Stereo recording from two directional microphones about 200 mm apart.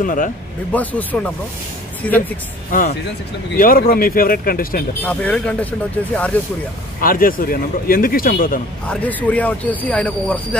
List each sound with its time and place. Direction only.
0.0 s speech: 40° left (ahead or behind)
0.7 s speech: 5° left (ahead or behind)
3.5 s speech: 45° left (ahead or behind)
5.0 s speech: 5° left (ahead or behind)
7.0 s speech: 45° left (ahead or behind)
8.8 s speech: 5° left (ahead or behind)